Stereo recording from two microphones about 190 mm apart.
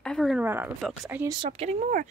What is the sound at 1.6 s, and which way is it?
Speech, 35° right (ahead or behind).